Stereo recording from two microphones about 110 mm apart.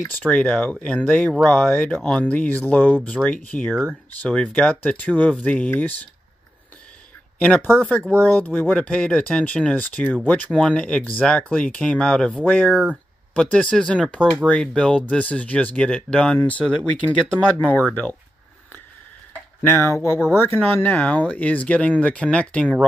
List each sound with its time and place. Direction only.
0.3 s speech: 10° left (ahead or behind)
7.3 s speech: 15° left (ahead or behind)
7.8 s speech: centre (ahead or behind)
8.2 s speech: 15° left (ahead or behind)
19.6 s speech: 20° left (ahead or behind)